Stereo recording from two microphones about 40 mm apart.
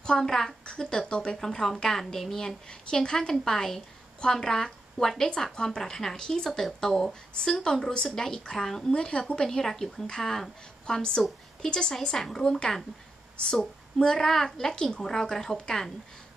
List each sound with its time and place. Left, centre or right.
0.0 s a woman's voice: centre
1.4 s a woman's voice: centre
2.7 s a woman's voice: centre
13.9 s a woman's voice: centre